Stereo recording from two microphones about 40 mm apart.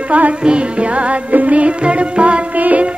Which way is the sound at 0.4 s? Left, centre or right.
Right.